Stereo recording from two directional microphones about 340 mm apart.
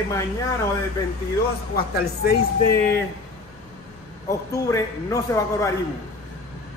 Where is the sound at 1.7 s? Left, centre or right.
Left.